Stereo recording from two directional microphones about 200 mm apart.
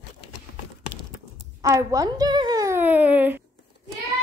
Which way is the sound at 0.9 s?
20° right (ahead or behind).